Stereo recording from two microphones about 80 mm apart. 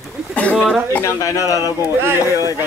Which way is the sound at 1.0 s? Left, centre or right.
Left.